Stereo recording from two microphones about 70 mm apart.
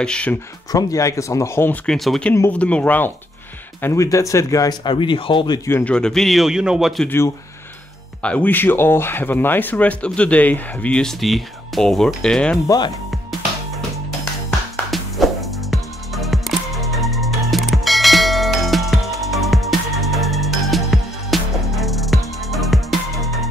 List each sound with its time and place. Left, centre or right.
0.0 s speech: centre
0.7 s speech: left
1.9 s speech: centre
2.5 s speech: centre
3.9 s speech: left
4.9 s speech: left
5.9 s speech: centre
8.2 s speech: centre
8.5 s speech: left
11.0 s speech: centre
12.6 s speech: left
13.1 s music: centre
14.9 s music: centre